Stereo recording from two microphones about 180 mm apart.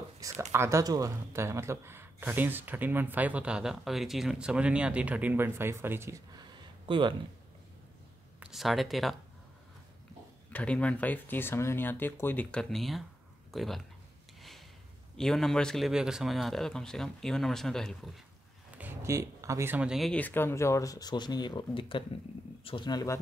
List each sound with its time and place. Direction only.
0.2 s speech: 15° right (ahead or behind)
6.9 s speech: 25° right (ahead or behind)
8.4 s speech: centre (ahead or behind)
10.5 s speech: 5° left (ahead or behind)
15.1 s a man's voice: centre (ahead or behind)
18.8 s speech: 15° right (ahead or behind); by 23.1 s 20° left (ahead or behind)